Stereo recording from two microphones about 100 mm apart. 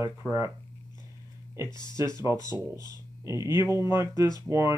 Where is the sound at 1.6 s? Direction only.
45° left (ahead or behind).